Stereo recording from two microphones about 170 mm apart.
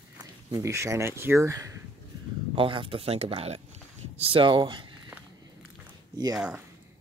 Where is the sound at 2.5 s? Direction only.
30° right (ahead or behind).